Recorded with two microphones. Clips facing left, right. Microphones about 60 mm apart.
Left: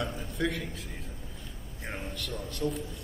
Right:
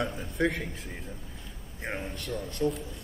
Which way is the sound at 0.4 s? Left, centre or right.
Right.